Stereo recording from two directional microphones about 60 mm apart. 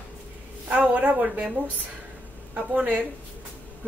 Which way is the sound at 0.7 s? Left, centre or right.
Right.